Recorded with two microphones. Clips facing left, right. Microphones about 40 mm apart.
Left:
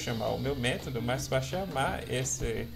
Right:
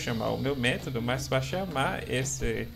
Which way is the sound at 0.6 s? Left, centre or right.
Right.